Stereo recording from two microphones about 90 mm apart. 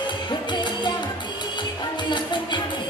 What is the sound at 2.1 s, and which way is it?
Music, 60° left (ahead or behind).